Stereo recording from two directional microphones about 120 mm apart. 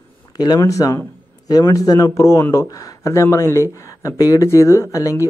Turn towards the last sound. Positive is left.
turn(degrees=25)  # may be behind; listen again after turning